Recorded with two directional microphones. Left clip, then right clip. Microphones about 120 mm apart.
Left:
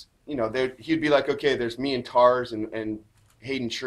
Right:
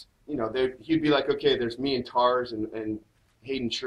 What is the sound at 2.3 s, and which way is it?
Speech, 15° left (ahead or behind).